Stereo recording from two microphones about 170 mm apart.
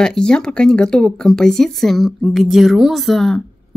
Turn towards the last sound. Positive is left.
turn(degrees=0)  # may be behind; listen again after turning